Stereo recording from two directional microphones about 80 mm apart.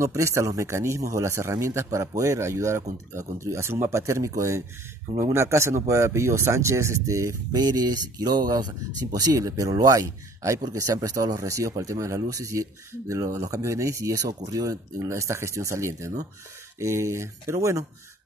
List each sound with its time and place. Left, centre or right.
0.0 s a man's voice: right
7.5 s a man's voice: right